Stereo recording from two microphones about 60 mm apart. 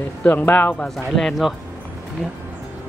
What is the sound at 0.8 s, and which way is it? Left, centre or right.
Speech, centre.